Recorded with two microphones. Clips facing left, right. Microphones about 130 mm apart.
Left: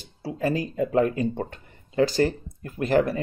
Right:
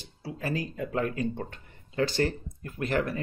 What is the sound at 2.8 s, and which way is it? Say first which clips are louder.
Speech: left 7 dB; 35° left (ahead or behind).